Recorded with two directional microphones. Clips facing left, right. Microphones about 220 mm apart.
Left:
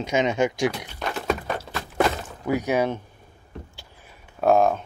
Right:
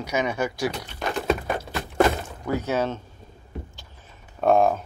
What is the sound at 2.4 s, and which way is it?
Speech, 15° left (ahead or behind).